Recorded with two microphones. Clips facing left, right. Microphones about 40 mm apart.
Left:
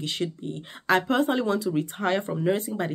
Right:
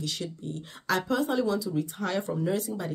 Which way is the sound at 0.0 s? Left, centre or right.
Left.